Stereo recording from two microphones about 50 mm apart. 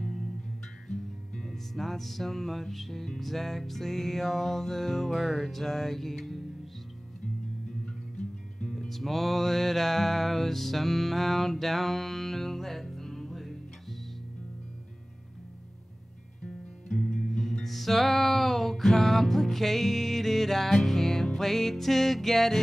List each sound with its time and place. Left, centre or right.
0.0 s music: centre
7.8 s music: centre
8.7 s music: centre
16.4 s music: centre